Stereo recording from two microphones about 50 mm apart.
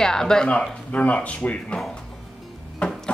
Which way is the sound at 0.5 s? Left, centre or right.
Left.